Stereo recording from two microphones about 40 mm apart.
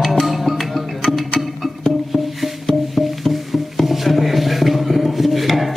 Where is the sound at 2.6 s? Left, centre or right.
Centre.